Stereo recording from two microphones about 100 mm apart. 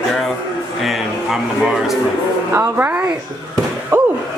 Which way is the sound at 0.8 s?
5° right (ahead or behind).